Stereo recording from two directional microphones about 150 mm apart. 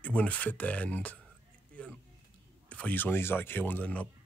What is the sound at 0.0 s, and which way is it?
Speech, 10° left (ahead or behind).